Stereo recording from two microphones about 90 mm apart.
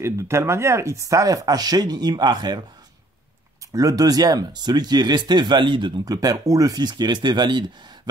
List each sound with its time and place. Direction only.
0.0 s speech: 30° right (ahead or behind); by 2.6 s 50° right (ahead or behind)
3.7 s speech: 40° right (ahead or behind); by 5.9 s 65° right (ahead or behind)
6.0 s speech: 40° right (ahead or behind); by 7.7 s 60° right (ahead or behind)